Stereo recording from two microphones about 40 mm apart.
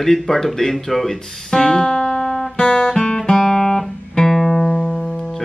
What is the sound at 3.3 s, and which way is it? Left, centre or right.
Music, centre.